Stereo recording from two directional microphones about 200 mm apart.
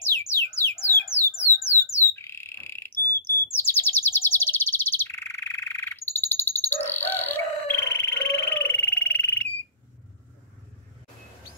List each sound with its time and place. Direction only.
0.1 s music: 10° left (ahead or behind)
1.6 s squawk: 30° left (ahead or behind)
2.1 s frog: 10° left (ahead or behind)
3.3 s bird vocalization: 10° left (ahead or behind)